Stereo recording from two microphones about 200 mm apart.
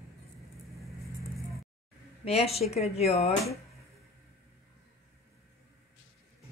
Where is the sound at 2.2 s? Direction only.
30° left (ahead or behind).